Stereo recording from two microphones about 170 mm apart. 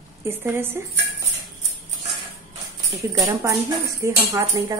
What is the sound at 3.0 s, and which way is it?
A woman's voice, 20° right (ahead or behind).